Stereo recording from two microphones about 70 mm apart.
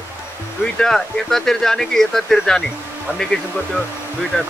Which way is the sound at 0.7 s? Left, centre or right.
Centre.